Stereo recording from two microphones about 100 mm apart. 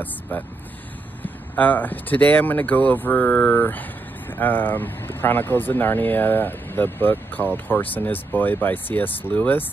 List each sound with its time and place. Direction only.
0.3 s speech: 15° left (ahead or behind)